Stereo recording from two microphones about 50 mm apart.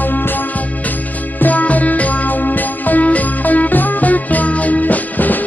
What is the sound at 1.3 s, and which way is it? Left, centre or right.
Music, left.